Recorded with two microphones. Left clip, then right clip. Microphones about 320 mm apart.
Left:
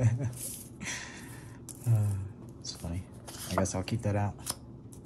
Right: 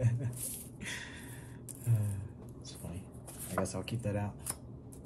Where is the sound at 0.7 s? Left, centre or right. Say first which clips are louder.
Left 3 dB; centre.